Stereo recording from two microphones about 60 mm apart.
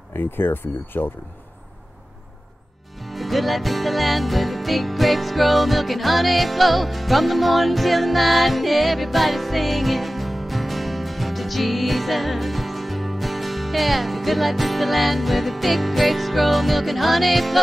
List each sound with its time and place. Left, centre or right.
0.2 s speech: left
3.0 s music: centre